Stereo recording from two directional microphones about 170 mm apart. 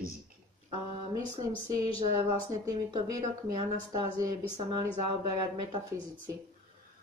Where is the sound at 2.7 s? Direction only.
20° right (ahead or behind).